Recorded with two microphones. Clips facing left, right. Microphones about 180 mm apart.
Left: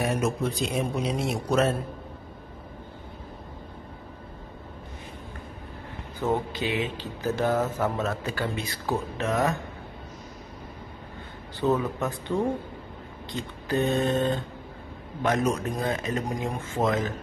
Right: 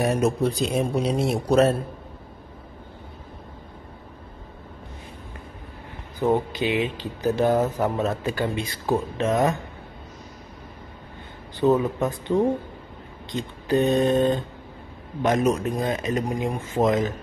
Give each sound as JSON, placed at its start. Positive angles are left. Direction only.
{"t": 0.0, "sound": "a man's voice", "side_deg": -35}
{"t": 6.2, "sound": "a man's voice", "side_deg": -20}
{"t": 11.6, "sound": "a man's voice", "side_deg": -15}